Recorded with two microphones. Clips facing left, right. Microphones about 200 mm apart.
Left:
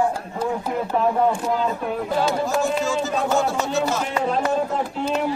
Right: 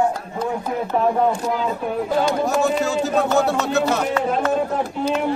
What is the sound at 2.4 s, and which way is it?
Music, 65° right (ahead or behind).